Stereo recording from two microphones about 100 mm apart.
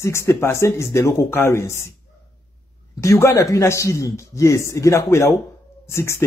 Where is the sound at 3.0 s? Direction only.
30° left (ahead or behind).